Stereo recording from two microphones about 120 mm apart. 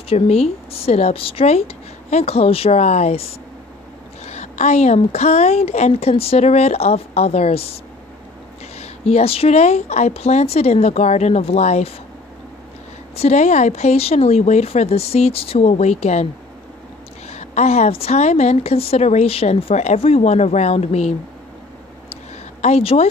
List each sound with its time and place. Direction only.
0.1 s a woman's voice: 55° left (ahead or behind)
4.3 s a woman's voice: 75° left (ahead or behind)
13.1 s a woman's voice: 65° left (ahead or behind)
17.3 s a woman's voice: 70° left (ahead or behind)
22.6 s speech: 60° left (ahead or behind)